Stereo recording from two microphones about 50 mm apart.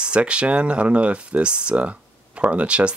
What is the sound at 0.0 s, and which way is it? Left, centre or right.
Speech, right.